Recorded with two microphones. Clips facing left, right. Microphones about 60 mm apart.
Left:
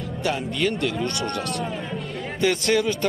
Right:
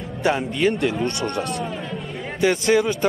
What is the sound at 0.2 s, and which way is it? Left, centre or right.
Speech, right.